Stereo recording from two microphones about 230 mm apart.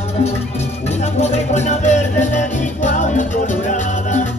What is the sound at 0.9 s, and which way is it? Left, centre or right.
Music, left.